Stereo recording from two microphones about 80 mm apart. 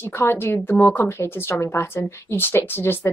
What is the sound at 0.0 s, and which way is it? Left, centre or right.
A woman's voice, left.